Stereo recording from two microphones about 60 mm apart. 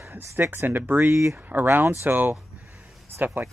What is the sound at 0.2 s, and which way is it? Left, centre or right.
Speech, right.